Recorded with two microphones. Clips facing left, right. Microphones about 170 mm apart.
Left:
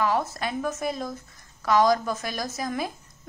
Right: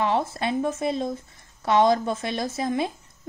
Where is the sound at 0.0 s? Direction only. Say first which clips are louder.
Right 1 dB; 25° right (ahead or behind).